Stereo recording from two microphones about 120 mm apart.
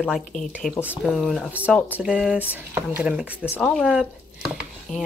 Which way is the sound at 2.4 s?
15° right (ahead or behind).